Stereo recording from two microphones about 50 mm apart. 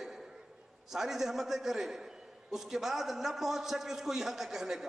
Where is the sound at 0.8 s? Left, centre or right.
Centre.